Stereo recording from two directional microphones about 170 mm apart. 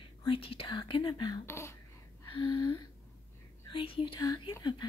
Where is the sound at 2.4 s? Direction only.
25° left (ahead or behind).